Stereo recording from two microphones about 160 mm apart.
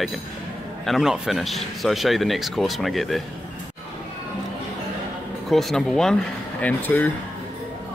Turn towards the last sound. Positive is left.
turn(degrees=10)  # may be behind; listen again after turning